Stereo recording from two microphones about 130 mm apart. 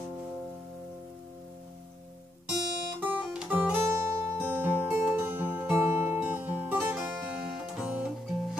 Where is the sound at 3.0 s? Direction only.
10° right (ahead or behind).